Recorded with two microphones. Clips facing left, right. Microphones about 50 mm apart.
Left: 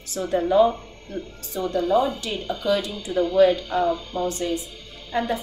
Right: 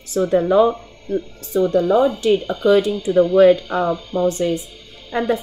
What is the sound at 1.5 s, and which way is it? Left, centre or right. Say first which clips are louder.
A woman's voice: right 6 dB; right.